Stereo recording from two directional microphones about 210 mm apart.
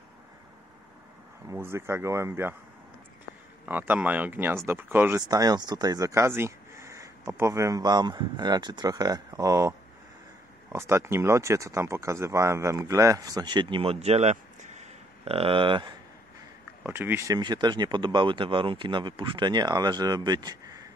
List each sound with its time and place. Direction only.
1.5 s speech: 10° right (ahead or behind)
3.6 s speech: 10° right (ahead or behind); by 15.9 s 25° right (ahead or behind)
16.8 s speech: 10° right (ahead or behind)